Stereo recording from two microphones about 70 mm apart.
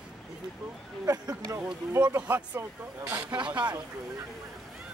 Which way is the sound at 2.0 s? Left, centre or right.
Right.